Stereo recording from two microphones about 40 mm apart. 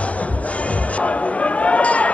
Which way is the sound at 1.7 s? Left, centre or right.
Left.